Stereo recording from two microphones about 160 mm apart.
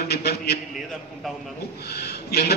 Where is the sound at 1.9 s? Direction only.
90° left.